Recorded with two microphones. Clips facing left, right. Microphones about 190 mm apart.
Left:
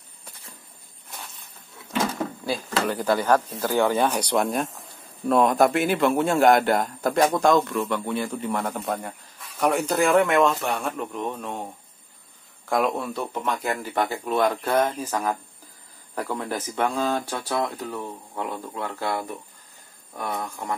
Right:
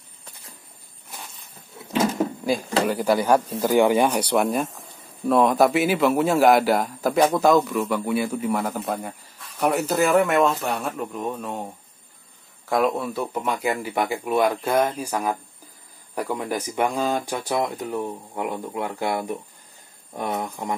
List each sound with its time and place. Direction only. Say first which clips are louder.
2.4 s speech: right 3 dB; 10° right (ahead or behind)
12.6 s speech: right 2 dB; centre (ahead or behind); by 20.7 s 20° right (ahead or behind)